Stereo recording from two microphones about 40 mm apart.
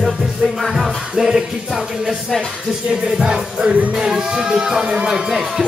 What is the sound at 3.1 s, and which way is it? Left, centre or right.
Speech, right.